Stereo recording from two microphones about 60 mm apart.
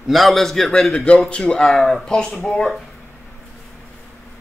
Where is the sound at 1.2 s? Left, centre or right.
Centre.